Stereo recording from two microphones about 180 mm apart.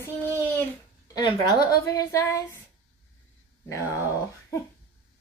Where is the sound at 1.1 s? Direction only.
20° left (ahead or behind).